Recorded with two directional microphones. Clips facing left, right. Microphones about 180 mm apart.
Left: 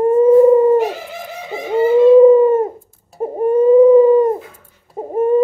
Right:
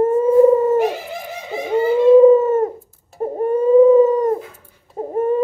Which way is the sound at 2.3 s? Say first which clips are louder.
Left 3 dB; 10° left (ahead or behind).